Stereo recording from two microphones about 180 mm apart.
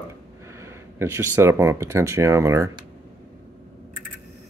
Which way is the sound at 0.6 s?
15° right (ahead or behind).